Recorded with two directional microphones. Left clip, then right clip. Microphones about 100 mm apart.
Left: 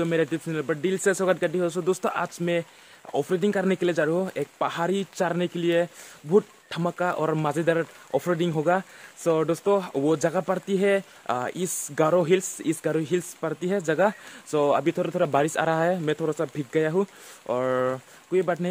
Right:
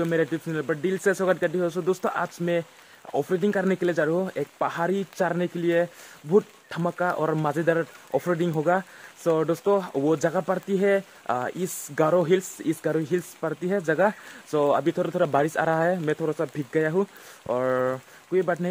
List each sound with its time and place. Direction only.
0.0 s speech: 15° left (ahead or behind)
15.4 s speech: 15° left (ahead or behind)